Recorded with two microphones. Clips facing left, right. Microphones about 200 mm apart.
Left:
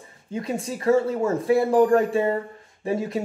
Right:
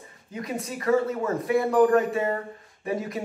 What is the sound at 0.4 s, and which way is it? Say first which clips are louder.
Speech: left 3 dB; 30° left (ahead or behind).